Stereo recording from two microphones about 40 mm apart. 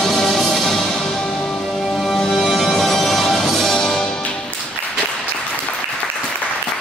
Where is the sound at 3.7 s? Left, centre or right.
Centre.